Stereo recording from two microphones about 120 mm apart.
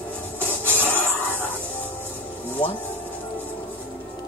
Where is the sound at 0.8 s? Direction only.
20° right (ahead or behind).